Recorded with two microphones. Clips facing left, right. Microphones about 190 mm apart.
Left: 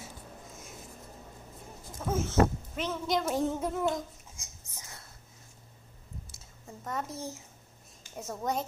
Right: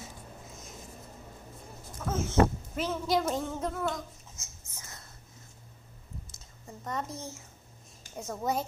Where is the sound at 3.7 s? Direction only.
20° left (ahead or behind).